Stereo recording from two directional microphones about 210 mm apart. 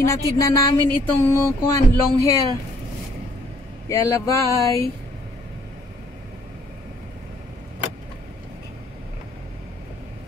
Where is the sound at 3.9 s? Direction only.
15° left (ahead or behind).